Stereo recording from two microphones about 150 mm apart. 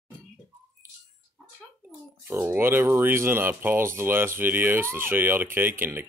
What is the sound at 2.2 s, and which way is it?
Speech, 15° right (ahead or behind).